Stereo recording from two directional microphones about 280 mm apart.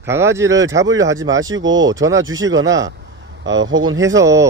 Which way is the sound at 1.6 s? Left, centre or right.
Right.